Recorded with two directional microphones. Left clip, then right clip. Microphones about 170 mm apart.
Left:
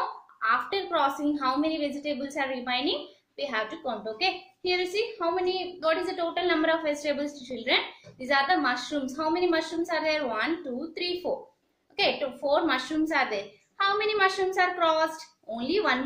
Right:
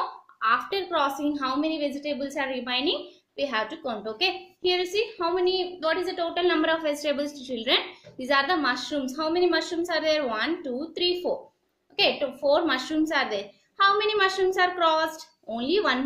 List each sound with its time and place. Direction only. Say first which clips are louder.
0.4 s a woman's voice: right 2 dB; 50° right (ahead or behind)
12.0 s a woman's voice: right 3 dB; 50° right (ahead or behind)